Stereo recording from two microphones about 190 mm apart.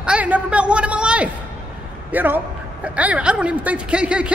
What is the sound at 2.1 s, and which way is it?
A man's voice, 10° right (ahead or behind).